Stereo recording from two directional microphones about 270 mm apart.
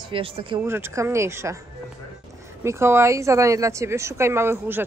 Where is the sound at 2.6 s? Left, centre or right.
Centre.